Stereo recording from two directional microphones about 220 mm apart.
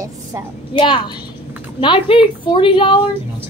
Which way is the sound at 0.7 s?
20° left (ahead or behind).